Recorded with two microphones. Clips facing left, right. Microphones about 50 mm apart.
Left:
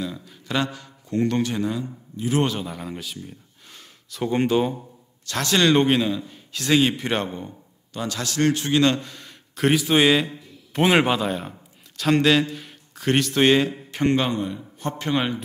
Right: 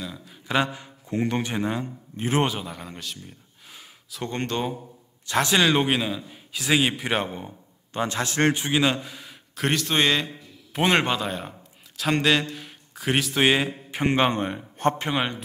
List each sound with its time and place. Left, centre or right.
0.0 s speech: centre
0.5 s a man's voice: centre
1.7 s a man's voice: right
2.6 s a sound: centre
4.2 s speech: centre
5.2 s a man's voice: centre
5.7 s a man's voice: centre
7.9 s speech: right
8.6 s a man's voice: centre
14.2 s speech: right
15.0 s a man's voice: centre